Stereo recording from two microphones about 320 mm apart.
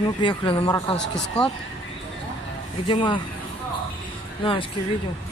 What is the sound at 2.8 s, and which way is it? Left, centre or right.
Speech, centre.